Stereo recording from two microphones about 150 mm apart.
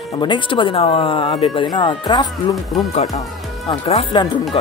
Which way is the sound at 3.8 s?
40° left (ahead or behind).